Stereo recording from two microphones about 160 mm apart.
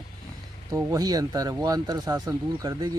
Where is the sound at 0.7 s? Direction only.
20° right (ahead or behind).